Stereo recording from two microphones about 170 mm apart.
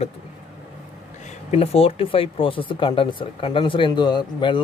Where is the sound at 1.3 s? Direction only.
40° left (ahead or behind).